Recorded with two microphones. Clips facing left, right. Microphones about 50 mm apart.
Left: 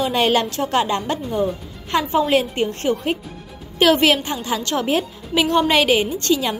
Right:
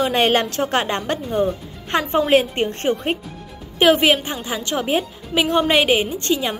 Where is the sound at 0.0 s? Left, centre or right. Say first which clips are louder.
Right 1 dB; right.